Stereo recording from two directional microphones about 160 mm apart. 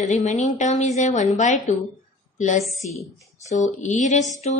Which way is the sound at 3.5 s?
50° left (ahead or behind).